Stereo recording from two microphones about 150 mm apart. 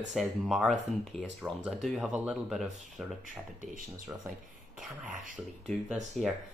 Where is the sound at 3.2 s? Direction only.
60° right (ahead or behind).